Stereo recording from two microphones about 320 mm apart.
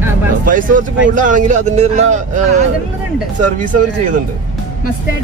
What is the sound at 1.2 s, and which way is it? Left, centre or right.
Speech, right.